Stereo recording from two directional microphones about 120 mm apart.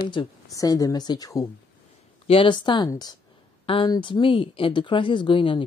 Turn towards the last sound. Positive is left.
turn(degrees=45)  # may be behind; listen again after turning